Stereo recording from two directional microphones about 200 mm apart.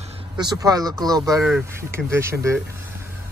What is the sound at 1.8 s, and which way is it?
Speech, 15° right (ahead or behind).